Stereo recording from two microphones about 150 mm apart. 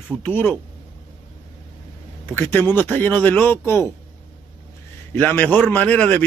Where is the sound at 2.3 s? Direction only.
15° left (ahead or behind).